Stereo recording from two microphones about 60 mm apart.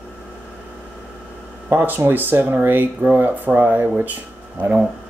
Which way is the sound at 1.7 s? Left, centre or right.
Right.